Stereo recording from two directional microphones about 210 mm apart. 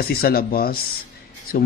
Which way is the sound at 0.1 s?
45° left (ahead or behind).